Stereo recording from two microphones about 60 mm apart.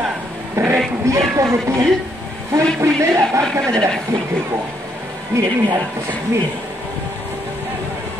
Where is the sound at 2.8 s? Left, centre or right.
Right.